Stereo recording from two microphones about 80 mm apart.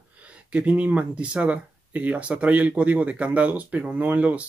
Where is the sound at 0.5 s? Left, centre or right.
Centre.